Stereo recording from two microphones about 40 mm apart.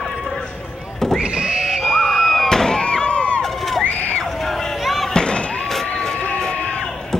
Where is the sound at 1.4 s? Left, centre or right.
Centre.